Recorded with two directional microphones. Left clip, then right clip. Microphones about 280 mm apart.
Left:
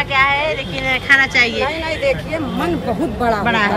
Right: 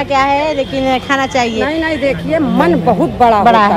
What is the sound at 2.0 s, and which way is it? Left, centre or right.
Speech, right.